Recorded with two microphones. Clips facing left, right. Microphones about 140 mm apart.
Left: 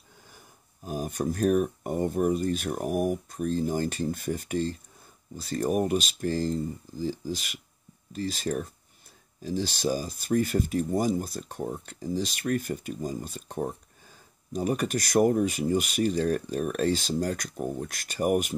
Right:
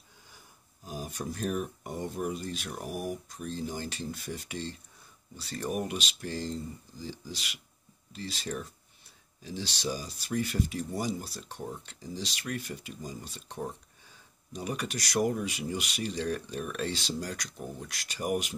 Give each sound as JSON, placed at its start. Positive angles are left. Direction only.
{"t": 0.8, "sound": "speech", "side_deg": 50}